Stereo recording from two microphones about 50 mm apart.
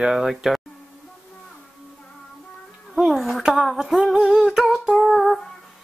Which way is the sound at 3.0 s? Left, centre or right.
Centre.